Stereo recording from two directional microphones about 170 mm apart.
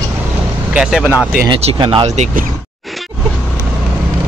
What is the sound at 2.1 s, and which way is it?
Speech, 50° right (ahead or behind).